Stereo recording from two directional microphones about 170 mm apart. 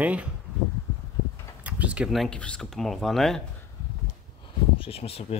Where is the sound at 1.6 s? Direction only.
5° right (ahead or behind).